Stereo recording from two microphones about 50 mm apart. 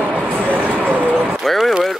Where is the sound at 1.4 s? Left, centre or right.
Centre.